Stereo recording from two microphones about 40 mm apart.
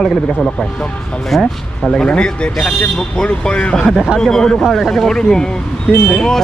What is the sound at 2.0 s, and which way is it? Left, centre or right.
Speech, left.